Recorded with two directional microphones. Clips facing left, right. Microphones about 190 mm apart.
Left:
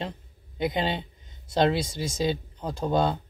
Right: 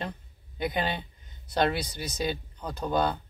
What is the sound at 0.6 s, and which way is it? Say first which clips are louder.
Speech: left 3 dB; 25° left (ahead or behind).